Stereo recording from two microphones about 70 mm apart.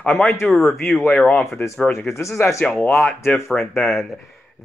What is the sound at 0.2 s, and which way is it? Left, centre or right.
Speech, left.